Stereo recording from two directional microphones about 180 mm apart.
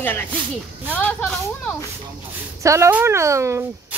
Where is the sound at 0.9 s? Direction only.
5° left (ahead or behind).